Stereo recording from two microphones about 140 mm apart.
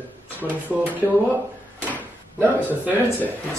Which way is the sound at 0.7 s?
10° right (ahead or behind).